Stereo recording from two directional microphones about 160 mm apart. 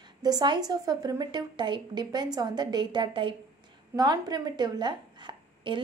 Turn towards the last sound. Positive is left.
turn(degrees=-30)  # may be behind; listen again after turning